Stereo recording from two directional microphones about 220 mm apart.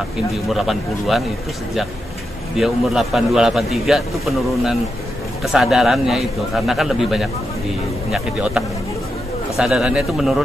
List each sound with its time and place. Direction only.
0.5 s a man's voice: centre (ahead or behind)
2.5 s a man's voice: centre (ahead or behind)